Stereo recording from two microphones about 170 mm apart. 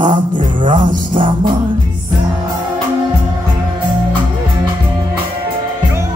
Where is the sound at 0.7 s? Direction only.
30° right (ahead or behind).